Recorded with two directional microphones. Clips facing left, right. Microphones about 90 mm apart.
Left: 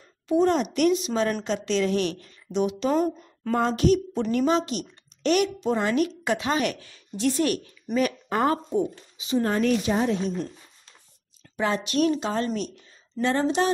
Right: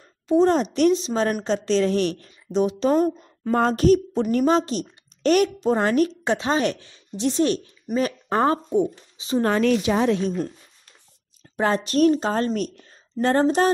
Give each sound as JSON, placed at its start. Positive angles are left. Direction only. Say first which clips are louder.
{"t": 0.3, "sound": "a woman's voice", "louder": "right 3 dB", "side_deg": -35}
{"t": 2.9, "sound": "speech", "louder": "right 4 dB", "side_deg": -10}
{"t": 3.5, "sound": "a woman's voice", "louder": "right 4 dB", "side_deg": -45}
{"t": 9.4, "sound": "a woman's voice", "louder": "right 4 dB", "side_deg": -90}
{"t": 11.5, "sound": "a woman's voice", "louder": "right 3 dB", "side_deg": -40}